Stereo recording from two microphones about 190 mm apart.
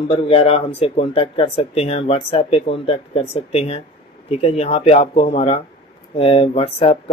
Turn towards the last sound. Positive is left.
turn(degrees=30)  # may be behind; listen again after turning